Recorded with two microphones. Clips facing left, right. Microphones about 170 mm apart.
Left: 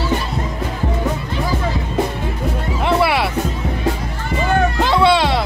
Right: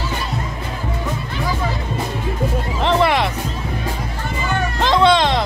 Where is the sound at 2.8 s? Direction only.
10° left (ahead or behind).